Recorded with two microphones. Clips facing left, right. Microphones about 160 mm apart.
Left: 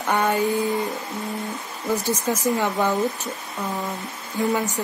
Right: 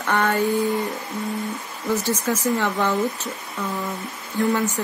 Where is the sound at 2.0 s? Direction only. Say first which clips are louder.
Even; 15° left (ahead or behind).